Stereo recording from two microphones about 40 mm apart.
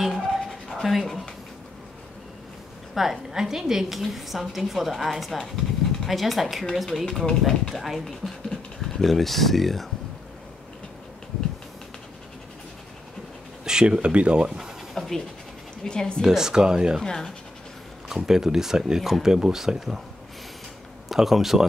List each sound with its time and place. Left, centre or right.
0.0 s dog: centre
0.8 s speech: centre
2.9 s speech: centre
8.5 s a sound: centre
9.1 s speech: centre
13.7 s speech: centre
15.0 s pant: centre
15.8 s a woman's voice: centre
16.2 s speech: centre
17.0 s speech: centre
18.0 s speech: centre
21.1 s speech: centre